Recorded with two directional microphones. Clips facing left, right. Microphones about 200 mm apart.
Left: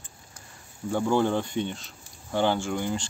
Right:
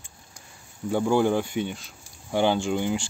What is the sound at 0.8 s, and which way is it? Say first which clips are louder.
Speech: right 2 dB; 10° right (ahead or behind).